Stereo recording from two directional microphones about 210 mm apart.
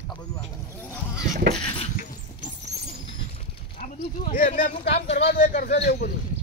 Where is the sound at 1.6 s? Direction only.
25° left (ahead or behind).